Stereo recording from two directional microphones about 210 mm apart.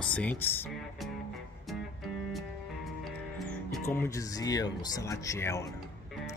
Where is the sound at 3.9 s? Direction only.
15° left (ahead or behind).